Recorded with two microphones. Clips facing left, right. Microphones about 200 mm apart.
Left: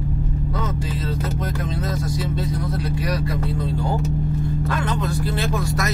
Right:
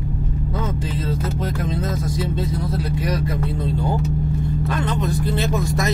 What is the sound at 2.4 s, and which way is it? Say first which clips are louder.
Speech: right 1 dB; 20° right (ahead or behind).